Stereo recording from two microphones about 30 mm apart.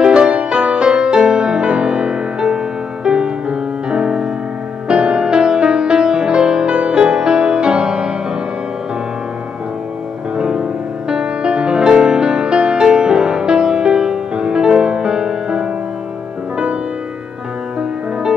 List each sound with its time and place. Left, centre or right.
0.0 s music: right
10.3 s music: right